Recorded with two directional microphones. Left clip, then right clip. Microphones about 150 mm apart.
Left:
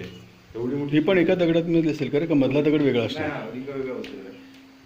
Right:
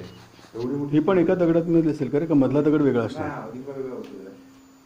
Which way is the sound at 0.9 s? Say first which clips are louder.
Even; 5° right (ahead or behind).